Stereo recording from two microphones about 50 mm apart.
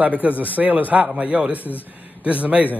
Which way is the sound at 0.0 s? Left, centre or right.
Right.